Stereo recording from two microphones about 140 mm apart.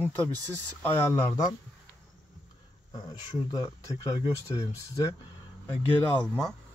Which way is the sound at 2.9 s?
25° left (ahead or behind).